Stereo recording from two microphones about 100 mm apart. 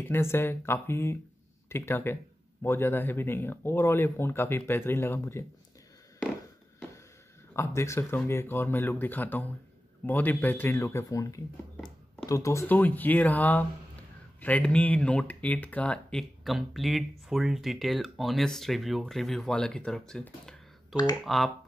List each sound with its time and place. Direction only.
0.0 s speech: 25° left (ahead or behind)
7.5 s speech: 30° left (ahead or behind)
12.6 s speech: 20° left (ahead or behind)
20.9 s speech: 45° left (ahead or behind)